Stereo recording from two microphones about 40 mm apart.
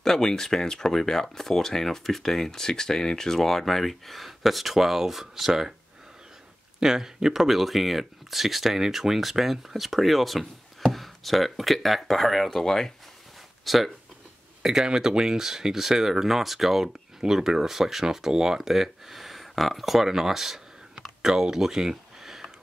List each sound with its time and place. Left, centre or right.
0.0 s speech: centre
6.8 s speech: centre
13.7 s speech: centre
14.6 s speech: centre
21.2 s a sound: centre